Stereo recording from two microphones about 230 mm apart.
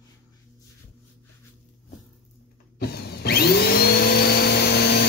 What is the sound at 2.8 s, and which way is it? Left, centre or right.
Vacuum cleaner, left.